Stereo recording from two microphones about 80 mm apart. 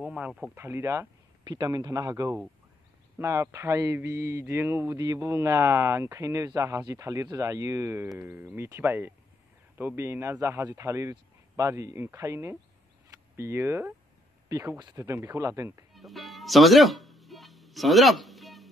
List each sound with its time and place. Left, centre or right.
0.0 s speech: centre
0.6 s speech: right
1.4 s speech: right
3.2 s speech: right
4.9 s speech: right
8.2 s speech: right
15.9 s music: centre